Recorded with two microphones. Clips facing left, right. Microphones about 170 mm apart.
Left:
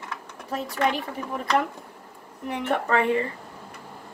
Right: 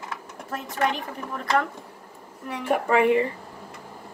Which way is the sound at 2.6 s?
10° right (ahead or behind).